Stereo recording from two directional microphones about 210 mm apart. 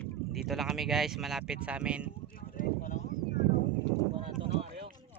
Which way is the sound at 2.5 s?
40° left (ahead or behind).